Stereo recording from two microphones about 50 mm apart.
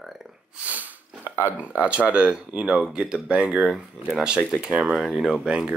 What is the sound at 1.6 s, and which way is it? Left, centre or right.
Speech, right.